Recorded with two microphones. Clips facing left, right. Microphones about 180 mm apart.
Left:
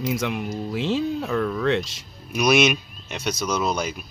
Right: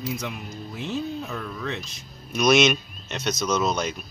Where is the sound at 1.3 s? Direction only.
60° left (ahead or behind); by 2.0 s 90° left.